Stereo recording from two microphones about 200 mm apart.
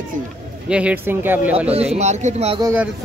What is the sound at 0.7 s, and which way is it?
Speech, 5° right (ahead or behind).